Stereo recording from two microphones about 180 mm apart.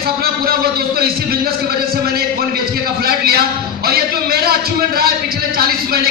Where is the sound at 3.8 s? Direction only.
60° right (ahead or behind).